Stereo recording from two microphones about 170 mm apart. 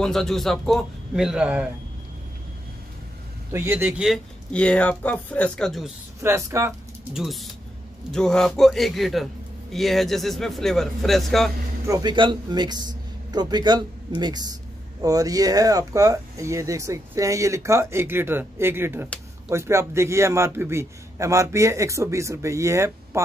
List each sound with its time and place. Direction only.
0.0 s a man's voice: centre (ahead or behind)
3.5 s speech: 15° right (ahead or behind)
4.5 s speech: 5° left (ahead or behind)
6.2 s speech: 15° right (ahead or behind)
7.2 s a man's voice: centre (ahead or behind)
11.8 s a man's voice: 20° right (ahead or behind)